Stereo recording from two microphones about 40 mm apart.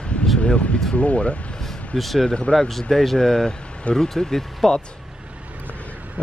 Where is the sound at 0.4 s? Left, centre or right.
Left.